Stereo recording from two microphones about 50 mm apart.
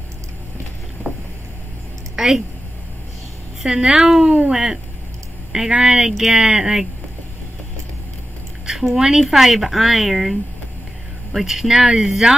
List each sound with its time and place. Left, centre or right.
2.1 s a sound: centre
3.6 s a woman's voice: centre
8.9 s a woman's voice: centre
11.3 s a woman's voice: centre